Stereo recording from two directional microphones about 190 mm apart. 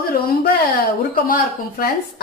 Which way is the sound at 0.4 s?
50° left (ahead or behind).